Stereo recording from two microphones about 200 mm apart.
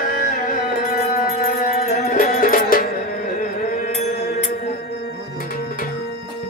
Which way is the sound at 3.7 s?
35° left (ahead or behind).